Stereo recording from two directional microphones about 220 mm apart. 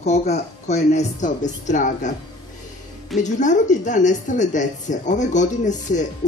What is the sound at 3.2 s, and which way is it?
Speech, 35° left (ahead or behind).